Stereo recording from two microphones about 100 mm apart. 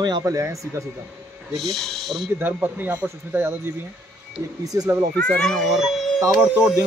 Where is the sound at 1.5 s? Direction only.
Centre (ahead or behind).